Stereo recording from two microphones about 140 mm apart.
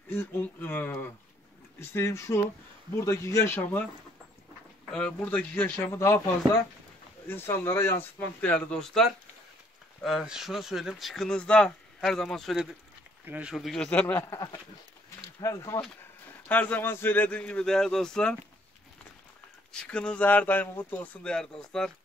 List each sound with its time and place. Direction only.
0.1 s speech: 15° left (ahead or behind)
4.9 s speech: 10° left (ahead or behind)
13.2 s speech: 10° right (ahead or behind); by 15.8 s 20° left (ahead or behind)
16.4 s speech: 10° left (ahead or behind)
19.7 s speech: 5° left (ahead or behind)